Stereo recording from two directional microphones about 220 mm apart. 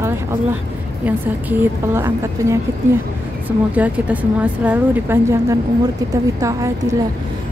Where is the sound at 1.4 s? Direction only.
10° right (ahead or behind).